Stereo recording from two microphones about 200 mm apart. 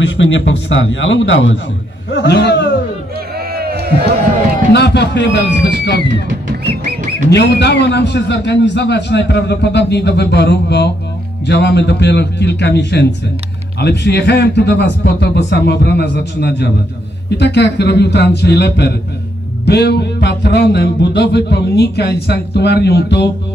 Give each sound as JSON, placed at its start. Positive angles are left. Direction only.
{"t": 0.0, "sound": "a man's voice", "side_deg": 65}
{"t": 3.3, "sound": "a sound", "side_deg": -50}
{"t": 4.7, "sound": "speech", "side_deg": 60}
{"t": 7.2, "sound": "speech", "side_deg": 55}